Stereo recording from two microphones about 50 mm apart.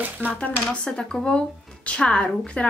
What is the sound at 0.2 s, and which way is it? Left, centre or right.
Speech, right.